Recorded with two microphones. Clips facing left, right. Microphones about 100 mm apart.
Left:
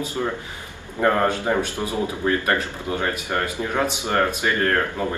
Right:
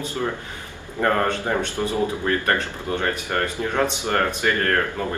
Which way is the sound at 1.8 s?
10° left (ahead or behind).